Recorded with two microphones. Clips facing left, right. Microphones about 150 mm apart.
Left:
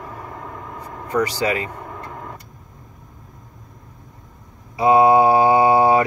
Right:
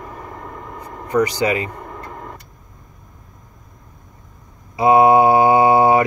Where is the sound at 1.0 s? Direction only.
20° right (ahead or behind).